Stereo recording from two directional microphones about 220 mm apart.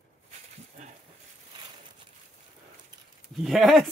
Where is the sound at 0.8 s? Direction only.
30° right (ahead or behind).